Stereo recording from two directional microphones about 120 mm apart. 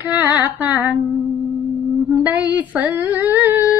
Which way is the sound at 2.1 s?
15° right (ahead or behind).